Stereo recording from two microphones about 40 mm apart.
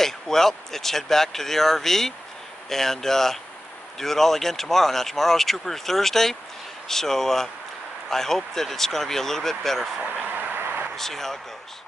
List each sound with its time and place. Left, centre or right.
0.0 s speech: centre
10.1 s vehicle: right
11.0 s speech: centre